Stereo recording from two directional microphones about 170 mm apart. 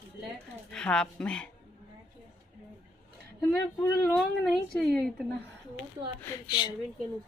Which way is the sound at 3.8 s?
15° left (ahead or behind).